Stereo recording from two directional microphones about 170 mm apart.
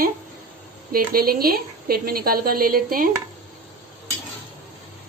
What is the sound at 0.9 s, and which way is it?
A woman's voice, 60° right (ahead or behind).